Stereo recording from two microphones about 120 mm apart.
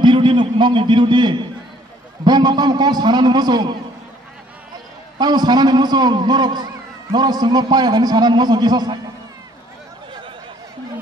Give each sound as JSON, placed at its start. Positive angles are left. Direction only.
{"t": 0.0, "sound": "a man's voice", "side_deg": -40}
{"t": 5.2, "sound": "a man's voice", "side_deg": -35}